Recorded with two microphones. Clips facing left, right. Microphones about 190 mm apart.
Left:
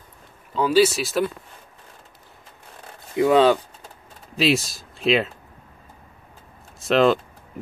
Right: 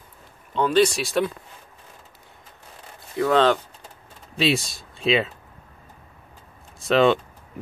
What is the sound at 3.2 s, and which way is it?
Speech, 10° left (ahead or behind).